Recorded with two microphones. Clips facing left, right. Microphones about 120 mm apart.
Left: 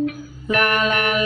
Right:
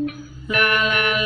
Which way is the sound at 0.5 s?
35° left (ahead or behind).